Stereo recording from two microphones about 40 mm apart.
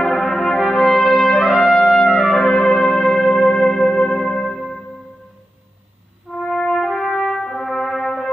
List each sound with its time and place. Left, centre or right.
0.0 s brass instrument: centre
0.6 s trumpet: centre
6.3 s music: centre
6.7 s brass instrument: centre